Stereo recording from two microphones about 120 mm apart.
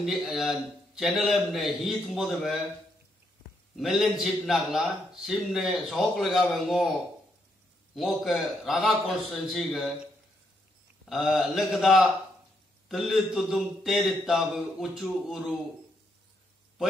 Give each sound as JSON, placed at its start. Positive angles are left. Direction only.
{"t": 0.0, "sound": "a man's voice", "side_deg": 0}
{"t": 3.7, "sound": "a man's voice", "side_deg": 0}
{"t": 11.1, "sound": "a man's voice", "side_deg": 0}